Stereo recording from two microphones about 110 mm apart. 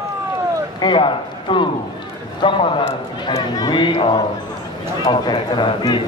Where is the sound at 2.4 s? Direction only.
65° left (ahead or behind).